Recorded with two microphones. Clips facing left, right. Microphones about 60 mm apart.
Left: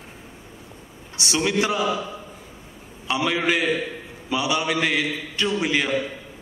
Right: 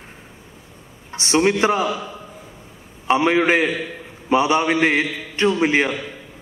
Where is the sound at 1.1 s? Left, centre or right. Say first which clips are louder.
Right 5 dB; right.